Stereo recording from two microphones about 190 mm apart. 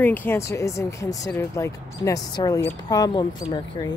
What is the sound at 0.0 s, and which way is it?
Speech, 10° left (ahead or behind).